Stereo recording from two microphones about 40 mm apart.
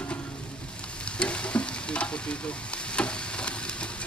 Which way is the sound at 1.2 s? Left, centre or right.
Left.